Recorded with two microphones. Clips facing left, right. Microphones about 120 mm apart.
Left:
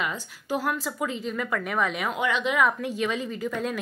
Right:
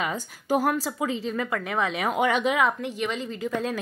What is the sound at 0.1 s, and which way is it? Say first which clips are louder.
Speech: right 5 dB; 45° right (ahead or behind).